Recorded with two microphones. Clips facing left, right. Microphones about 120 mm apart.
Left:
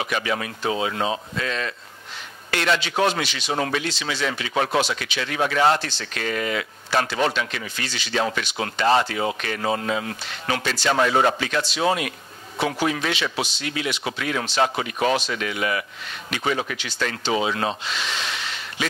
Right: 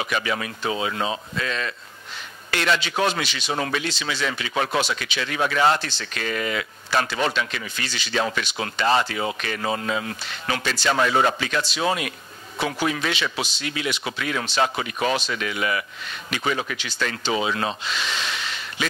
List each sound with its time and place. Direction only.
0.2 s speech: 45° left (ahead or behind)
5.8 s speech: 65° left (ahead or behind)
6.2 s speech: 45° left (ahead or behind)
7.1 s speech: 55° left (ahead or behind)
9.5 s speech: 40° left (ahead or behind)
16.3 s speech: 60° left (ahead or behind)